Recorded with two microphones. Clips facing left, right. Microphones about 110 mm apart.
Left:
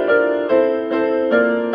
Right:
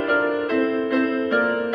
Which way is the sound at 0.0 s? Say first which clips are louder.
Left 6 dB; 30° left (ahead or behind).